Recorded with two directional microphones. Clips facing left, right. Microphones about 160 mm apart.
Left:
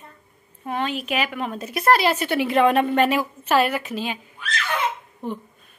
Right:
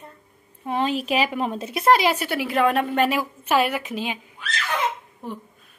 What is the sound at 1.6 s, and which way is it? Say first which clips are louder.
A woman's voice: even; 20° right (ahead or behind).